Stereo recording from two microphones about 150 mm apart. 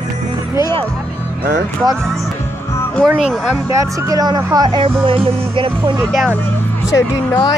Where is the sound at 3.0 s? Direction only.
5° right (ahead or behind).